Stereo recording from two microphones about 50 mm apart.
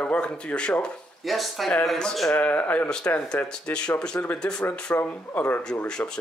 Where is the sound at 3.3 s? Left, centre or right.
Left.